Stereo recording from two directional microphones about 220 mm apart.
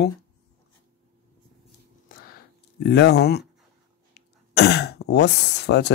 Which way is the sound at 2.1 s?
45° left (ahead or behind).